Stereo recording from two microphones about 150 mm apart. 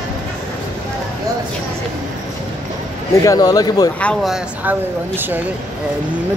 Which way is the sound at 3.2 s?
25° left (ahead or behind).